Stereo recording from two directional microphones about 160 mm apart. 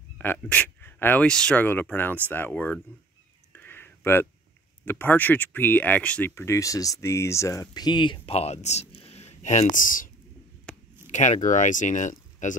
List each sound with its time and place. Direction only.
0.2 s speech: 10° left (ahead or behind)
3.5 s a sound: 15° left (ahead or behind)
4.8 s speech: 10° left (ahead or behind); by 10.0 s 55° left (ahead or behind)
11.1 s speech: 50° left (ahead or behind)